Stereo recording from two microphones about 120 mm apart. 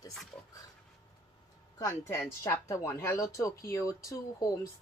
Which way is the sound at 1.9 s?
20° left (ahead or behind).